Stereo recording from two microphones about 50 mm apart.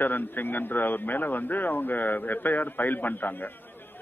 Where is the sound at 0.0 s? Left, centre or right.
Left.